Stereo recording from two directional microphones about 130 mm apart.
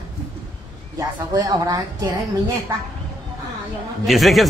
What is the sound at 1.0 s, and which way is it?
A woman's voice, 30° right (ahead or behind).